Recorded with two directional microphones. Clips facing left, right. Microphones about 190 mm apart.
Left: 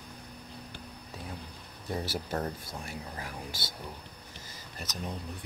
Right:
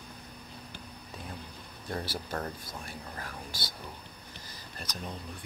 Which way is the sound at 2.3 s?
25° left (ahead or behind).